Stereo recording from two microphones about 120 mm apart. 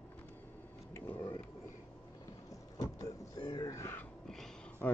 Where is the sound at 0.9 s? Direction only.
20° left (ahead or behind).